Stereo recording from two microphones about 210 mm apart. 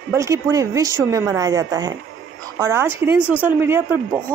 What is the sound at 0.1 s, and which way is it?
Speech, 15° right (ahead or behind).